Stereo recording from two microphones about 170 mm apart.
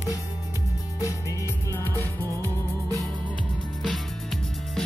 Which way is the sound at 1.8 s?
15° left (ahead or behind).